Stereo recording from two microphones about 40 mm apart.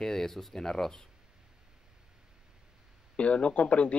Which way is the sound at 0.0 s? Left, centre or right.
Centre.